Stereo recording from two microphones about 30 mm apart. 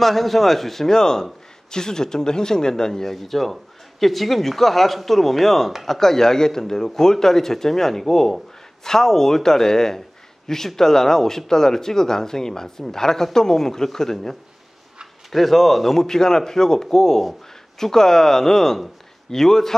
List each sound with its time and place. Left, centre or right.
0.0 s speech: centre
0.8 s a man's voice: left
15.3 s speech: centre
16.1 s speech: centre